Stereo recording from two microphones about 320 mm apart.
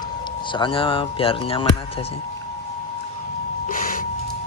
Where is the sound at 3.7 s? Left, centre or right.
Left.